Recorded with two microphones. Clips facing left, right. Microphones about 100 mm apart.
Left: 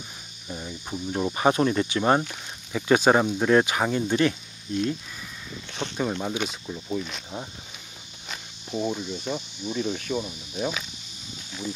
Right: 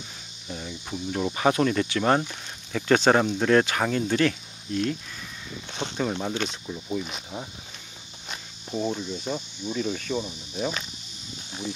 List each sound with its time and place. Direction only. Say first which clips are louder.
0.5 s cricket: even; 10° left (ahead or behind)
1.3 s speech: left 1 dB; 25° left (ahead or behind)
5.8 s speech: even; 15° right (ahead or behind)
6.3 s speech: even; 5° left (ahead or behind)